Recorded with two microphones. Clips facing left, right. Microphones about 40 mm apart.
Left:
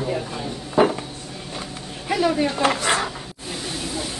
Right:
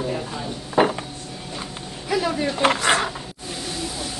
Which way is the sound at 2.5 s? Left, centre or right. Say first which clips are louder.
Right 1 dB; right.